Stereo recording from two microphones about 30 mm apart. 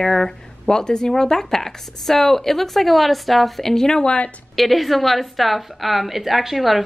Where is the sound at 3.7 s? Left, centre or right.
Centre.